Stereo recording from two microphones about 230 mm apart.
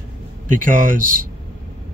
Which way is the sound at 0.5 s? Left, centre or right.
Right.